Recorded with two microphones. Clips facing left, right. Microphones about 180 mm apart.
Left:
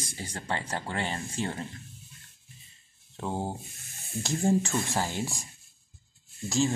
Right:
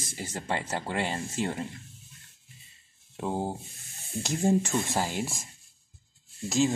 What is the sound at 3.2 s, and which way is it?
Speech, 10° right (ahead or behind).